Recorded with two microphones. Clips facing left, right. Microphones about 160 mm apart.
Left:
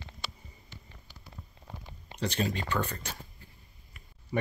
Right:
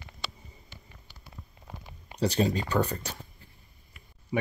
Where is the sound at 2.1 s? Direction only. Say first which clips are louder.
Right 5 dB; 35° right (ahead or behind).